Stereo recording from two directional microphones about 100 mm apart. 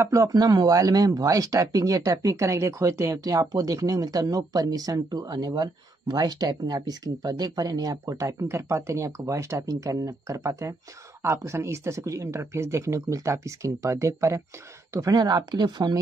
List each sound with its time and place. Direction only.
0.0 s speech: 35° right (ahead or behind)
15.1 s speech: 45° right (ahead or behind)